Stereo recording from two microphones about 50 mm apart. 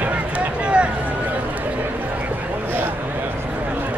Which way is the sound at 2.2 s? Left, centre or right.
Right.